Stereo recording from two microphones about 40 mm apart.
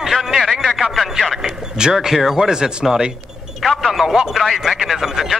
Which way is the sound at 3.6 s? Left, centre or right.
Centre.